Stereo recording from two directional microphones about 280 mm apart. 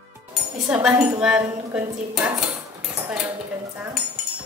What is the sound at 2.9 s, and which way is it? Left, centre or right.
Dishes, centre.